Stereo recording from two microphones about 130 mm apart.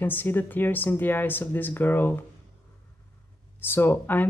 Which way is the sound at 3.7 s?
15° left (ahead or behind).